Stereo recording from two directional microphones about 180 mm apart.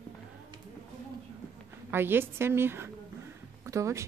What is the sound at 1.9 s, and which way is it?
Speech, 10° right (ahead or behind).